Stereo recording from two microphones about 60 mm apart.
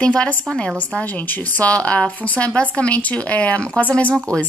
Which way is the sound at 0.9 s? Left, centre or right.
Left.